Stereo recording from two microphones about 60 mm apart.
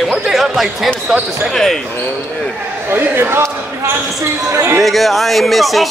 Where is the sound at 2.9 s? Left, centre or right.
Right.